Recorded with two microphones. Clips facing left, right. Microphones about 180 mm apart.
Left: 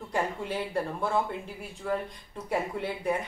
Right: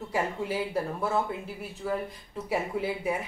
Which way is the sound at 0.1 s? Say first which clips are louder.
Right 1 dB; 5° right (ahead or behind).